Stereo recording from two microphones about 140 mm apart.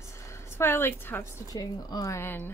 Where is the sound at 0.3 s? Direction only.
20° left (ahead or behind).